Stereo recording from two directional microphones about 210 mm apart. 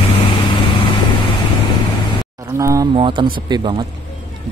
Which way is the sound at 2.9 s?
25° right (ahead or behind).